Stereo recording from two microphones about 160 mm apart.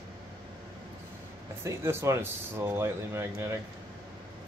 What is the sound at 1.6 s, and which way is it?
Speech, 15° right (ahead or behind).